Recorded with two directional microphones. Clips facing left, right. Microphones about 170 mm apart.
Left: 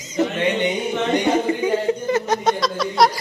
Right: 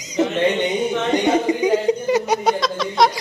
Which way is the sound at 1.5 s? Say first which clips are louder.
Right 2 dB; 15° right (ahead or behind).